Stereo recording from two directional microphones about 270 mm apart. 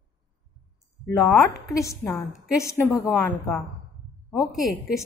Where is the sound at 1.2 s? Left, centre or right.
Centre.